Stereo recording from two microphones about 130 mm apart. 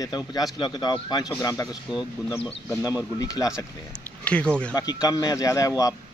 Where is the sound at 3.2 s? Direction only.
25° left (ahead or behind).